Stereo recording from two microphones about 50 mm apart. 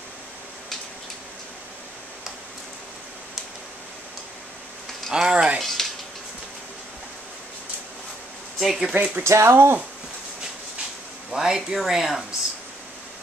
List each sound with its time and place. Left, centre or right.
5.1 s a sound: centre
5.6 s speech: centre
8.5 s speech: centre
8.9 s speech: right
9.2 s speech: right
11.3 s speech: centre